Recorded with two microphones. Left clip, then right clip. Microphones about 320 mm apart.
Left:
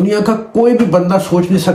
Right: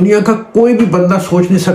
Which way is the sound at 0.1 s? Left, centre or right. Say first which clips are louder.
Right 5 dB; centre.